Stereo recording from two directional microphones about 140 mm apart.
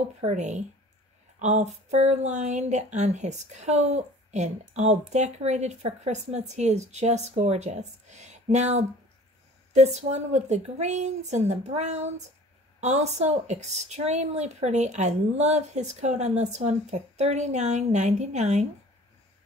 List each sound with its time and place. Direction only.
0.2 s a woman's voice: 55° right (ahead or behind)